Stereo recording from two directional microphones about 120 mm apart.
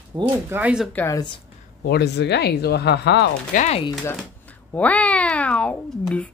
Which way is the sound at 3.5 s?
90° left.